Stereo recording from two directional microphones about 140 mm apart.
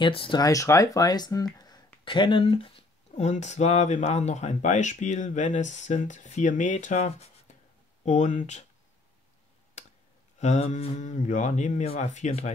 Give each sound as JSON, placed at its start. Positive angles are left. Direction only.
{"t": 0.0, "sound": "speech", "side_deg": 35}
{"t": 0.4, "sound": "speech", "side_deg": 25}
{"t": 9.8, "sound": "tick", "side_deg": 55}
{"t": 10.4, "sound": "speech", "side_deg": 55}